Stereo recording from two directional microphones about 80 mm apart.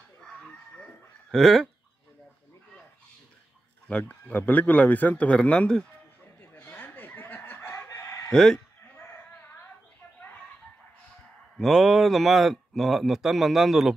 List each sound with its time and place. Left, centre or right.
0.2 s chicken: centre
1.3 s speech: centre
3.8 s a man's voice: left
6.6 s chicken: left
8.3 s speech: centre
11.5 s speech: centre